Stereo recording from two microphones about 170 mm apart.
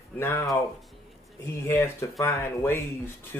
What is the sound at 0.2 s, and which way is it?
Speech, 15° left (ahead or behind).